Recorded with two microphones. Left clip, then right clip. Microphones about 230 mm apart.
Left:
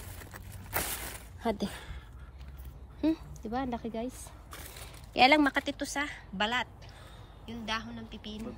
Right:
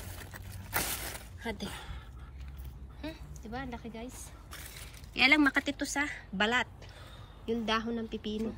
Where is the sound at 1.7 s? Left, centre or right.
Centre.